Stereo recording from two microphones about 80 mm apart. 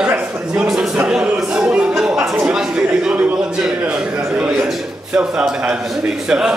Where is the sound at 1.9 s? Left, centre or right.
Centre.